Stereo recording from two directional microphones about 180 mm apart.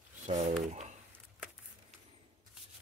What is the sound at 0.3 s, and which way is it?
Speech, 35° right (ahead or behind).